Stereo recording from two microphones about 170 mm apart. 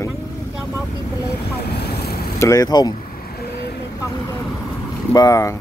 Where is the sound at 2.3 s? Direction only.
20° left (ahead or behind).